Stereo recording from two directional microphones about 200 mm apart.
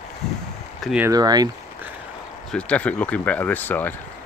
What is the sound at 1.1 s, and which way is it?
Speech, 20° right (ahead or behind).